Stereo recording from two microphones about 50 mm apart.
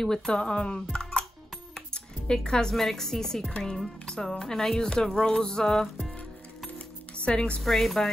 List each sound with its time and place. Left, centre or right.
0.3 s speech: centre
2.2 s speech: centre
3.4 s speech: centre
7.2 s speech: left
7.6 s speech: centre